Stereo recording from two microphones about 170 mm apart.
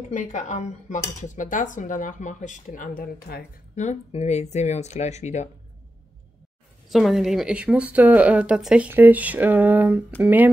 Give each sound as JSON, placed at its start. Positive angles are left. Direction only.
{"t": 0.1, "sound": "speech", "side_deg": 45}
{"t": 3.0, "sound": "speech", "side_deg": 65}
{"t": 3.7, "sound": "speech", "side_deg": 45}
{"t": 6.9, "sound": "speech", "side_deg": 0}